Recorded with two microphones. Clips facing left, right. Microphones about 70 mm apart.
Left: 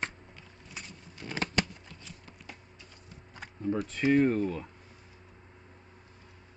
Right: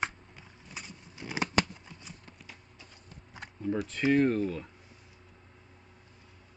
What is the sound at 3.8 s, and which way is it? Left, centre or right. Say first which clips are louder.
Speech: left 1 dB; centre.